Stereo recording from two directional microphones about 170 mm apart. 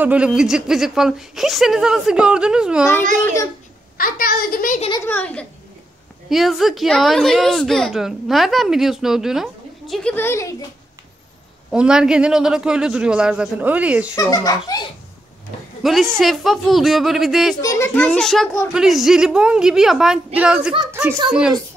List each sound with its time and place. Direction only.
0.0 s a woman's voice: 5° right (ahead or behind)
4.0 s a child's voice: 60° left (ahead or behind)
5.0 s a child's voice: 10° left (ahead or behind)
11.7 s a woman's voice: 5° right (ahead or behind)
14.1 s a child's voice: 20° left (ahead or behind)
15.8 s a woman's voice: centre (ahead or behind)
17.6 s a child's voice: 15° left (ahead or behind); by 21.5 s 5° right (ahead or behind)